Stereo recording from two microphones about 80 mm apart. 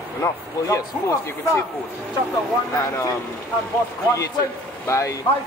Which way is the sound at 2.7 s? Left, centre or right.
Left.